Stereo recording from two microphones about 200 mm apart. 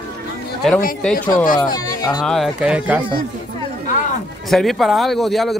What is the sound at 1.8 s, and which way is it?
Speech, 20° left (ahead or behind).